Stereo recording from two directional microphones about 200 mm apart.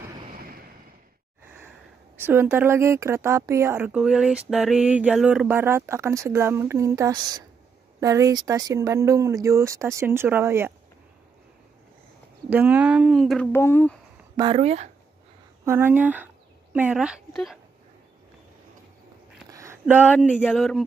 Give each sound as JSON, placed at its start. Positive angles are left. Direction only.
{"t": 0.3, "sound": "a sound", "side_deg": -45}
{"t": 2.1, "sound": "speech", "side_deg": -10}
{"t": 12.4, "sound": "speech", "side_deg": -5}
{"t": 13.5, "sound": "speech", "side_deg": 10}
{"t": 14.3, "sound": "speech", "side_deg": -25}
{"t": 15.6, "sound": "a woman's voice", "side_deg": -10}
{"t": 19.5, "sound": "a sound", "side_deg": -15}
{"t": 20.4, "sound": "speech", "side_deg": 0}